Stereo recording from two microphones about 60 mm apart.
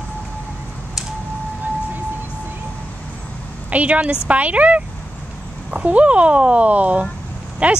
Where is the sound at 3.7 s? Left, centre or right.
Right.